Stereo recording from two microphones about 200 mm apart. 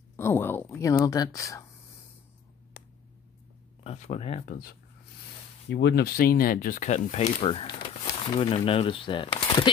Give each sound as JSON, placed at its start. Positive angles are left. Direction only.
{"t": 0.1, "sound": "speech", "side_deg": 10}
{"t": 3.8, "sound": "speech", "side_deg": 30}
{"t": 5.7, "sound": "speech", "side_deg": 55}